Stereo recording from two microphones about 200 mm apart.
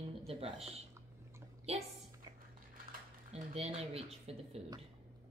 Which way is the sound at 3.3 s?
30° right (ahead or behind).